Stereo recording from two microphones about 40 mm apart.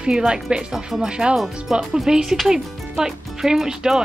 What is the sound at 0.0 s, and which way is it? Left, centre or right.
Speech, right.